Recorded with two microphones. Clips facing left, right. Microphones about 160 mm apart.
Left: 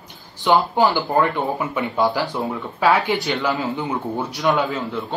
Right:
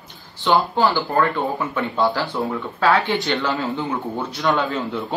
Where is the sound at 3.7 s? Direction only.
15° left (ahead or behind).